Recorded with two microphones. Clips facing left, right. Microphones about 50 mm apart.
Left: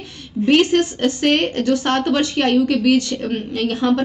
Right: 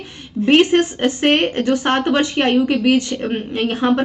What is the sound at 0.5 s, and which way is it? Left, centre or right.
Speech, right.